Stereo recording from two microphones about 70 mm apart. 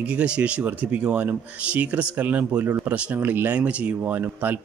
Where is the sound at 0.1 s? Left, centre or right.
Centre.